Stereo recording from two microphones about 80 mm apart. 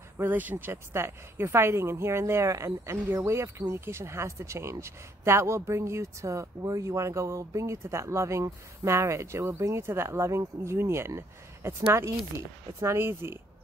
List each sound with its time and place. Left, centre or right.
0.2 s speech: right